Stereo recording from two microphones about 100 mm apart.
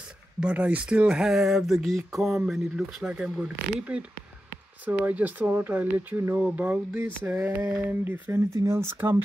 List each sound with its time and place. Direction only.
0.4 s speech: 15° right (ahead or behind)